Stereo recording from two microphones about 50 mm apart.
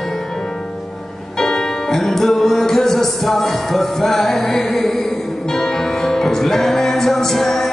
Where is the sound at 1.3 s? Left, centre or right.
Centre.